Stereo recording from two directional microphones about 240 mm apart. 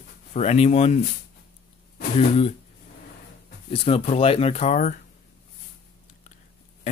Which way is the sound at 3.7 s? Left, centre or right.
Left.